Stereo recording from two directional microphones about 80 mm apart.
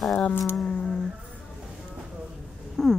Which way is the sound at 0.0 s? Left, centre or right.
Centre.